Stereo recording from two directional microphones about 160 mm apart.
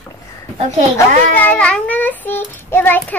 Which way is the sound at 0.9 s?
10° left (ahead or behind).